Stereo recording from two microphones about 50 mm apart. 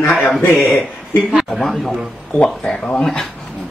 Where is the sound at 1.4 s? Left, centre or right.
Centre.